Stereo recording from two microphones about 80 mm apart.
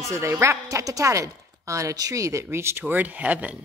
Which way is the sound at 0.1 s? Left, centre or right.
Right.